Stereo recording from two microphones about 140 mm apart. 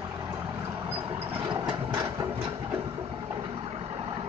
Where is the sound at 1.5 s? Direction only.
30° right (ahead or behind).